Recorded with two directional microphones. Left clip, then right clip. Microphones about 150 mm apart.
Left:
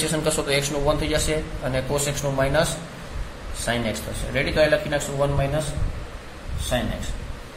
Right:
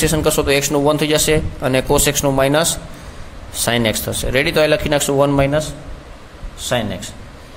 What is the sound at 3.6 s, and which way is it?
Speech, 65° right (ahead or behind).